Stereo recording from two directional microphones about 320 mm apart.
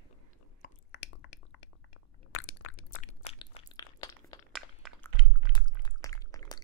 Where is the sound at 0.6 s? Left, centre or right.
Left.